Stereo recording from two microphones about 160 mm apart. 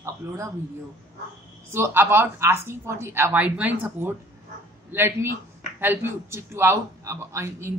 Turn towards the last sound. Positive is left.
turn(degrees=-15)  # may be behind; listen again after turning